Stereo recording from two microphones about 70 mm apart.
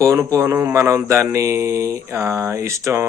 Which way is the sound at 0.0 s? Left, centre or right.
Right.